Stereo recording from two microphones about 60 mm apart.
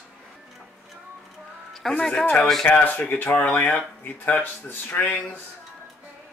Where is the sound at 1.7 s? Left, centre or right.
Centre.